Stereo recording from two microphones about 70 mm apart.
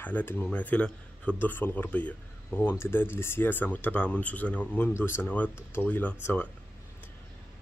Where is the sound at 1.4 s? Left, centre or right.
Left.